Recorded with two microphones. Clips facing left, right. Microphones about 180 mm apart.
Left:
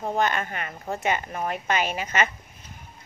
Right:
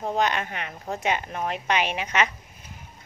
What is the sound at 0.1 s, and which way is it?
Speech, 5° left (ahead or behind).